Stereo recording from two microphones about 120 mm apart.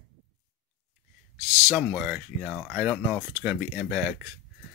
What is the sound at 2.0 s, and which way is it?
Speech, 10° right (ahead or behind).